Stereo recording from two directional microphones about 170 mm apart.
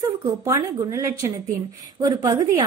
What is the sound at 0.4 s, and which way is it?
A woman's voice, 15° right (ahead or behind).